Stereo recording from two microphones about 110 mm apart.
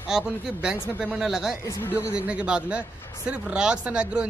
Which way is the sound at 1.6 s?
25° left (ahead or behind).